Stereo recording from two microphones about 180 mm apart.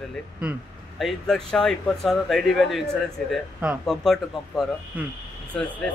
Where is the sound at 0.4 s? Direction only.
5° right (ahead or behind).